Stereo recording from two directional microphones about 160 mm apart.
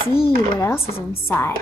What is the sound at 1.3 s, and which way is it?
Speech, 15° left (ahead or behind).